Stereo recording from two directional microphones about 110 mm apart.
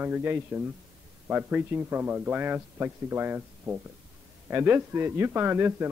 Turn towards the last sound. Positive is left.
turn(degrees=-20)  # may be behind; listen again after turning